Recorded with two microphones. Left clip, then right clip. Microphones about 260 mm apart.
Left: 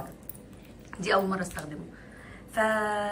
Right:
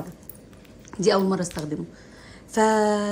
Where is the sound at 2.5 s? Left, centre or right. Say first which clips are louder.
Right 6 dB; centre.